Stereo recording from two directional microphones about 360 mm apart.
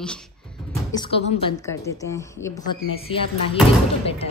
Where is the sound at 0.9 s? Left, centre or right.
Centre.